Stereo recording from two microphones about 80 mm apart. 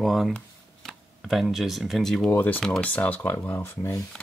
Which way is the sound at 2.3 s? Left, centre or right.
Left.